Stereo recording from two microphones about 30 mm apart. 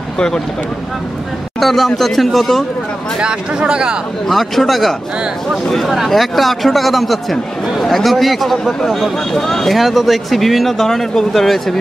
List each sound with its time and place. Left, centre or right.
1.6 s speech: centre
3.2 s speech: right
4.3 s speech: centre
6.0 s speech: centre
9.3 s speech: centre
9.7 s speech: centre